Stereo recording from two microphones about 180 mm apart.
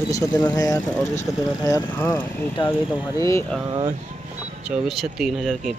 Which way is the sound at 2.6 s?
25° left (ahead or behind).